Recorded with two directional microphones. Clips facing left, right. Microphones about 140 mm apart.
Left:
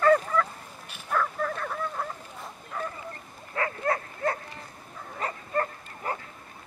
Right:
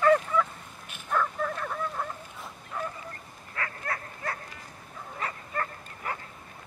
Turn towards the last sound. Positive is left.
turn(degrees=35)  # may be behind; listen again after turning